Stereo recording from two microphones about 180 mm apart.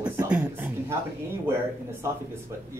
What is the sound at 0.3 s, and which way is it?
Speech, 10° right (ahead or behind).